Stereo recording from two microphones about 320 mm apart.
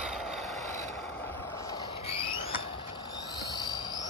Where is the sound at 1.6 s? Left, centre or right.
Centre.